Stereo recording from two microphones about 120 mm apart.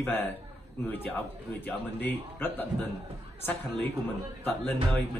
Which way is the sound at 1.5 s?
15° left (ahead or behind).